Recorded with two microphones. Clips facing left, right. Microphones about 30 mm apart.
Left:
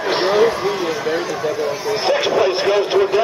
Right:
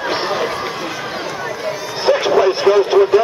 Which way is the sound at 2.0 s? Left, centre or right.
Centre.